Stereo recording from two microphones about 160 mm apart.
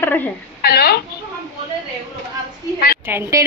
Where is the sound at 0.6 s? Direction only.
75° left (ahead or behind).